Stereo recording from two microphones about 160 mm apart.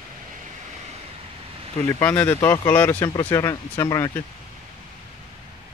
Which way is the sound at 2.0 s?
10° left (ahead or behind).